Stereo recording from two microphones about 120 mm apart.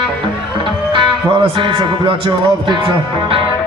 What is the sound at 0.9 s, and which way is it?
Music, 45° right (ahead or behind).